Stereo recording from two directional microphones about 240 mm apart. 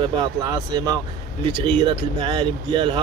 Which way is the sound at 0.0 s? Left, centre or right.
Centre.